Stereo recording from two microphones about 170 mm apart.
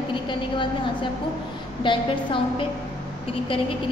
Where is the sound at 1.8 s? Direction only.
30° left (ahead or behind).